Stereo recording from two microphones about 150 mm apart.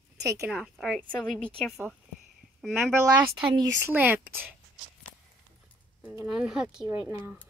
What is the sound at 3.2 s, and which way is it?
Speech, 15° right (ahead or behind).